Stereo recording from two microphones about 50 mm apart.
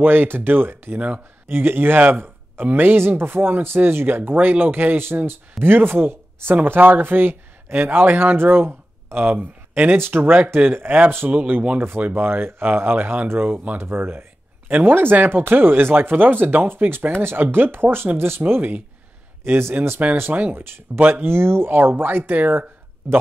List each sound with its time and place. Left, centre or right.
0.0 s a man's voice: right
9.8 s a man's voice: right
13.7 s a man's voice: right